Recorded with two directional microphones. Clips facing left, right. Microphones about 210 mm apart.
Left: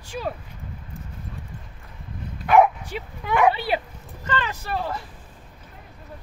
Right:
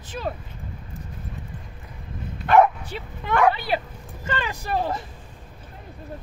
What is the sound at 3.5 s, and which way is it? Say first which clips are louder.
Speech: left 1 dB; 25° left (ahead or behind).